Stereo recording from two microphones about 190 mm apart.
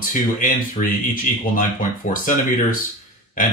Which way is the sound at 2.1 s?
45° left (ahead or behind).